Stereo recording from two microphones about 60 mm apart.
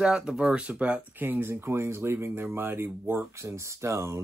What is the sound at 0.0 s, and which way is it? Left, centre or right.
Speech, centre.